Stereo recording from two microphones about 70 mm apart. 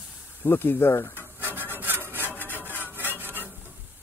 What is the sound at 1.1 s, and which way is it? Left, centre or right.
Rub, right.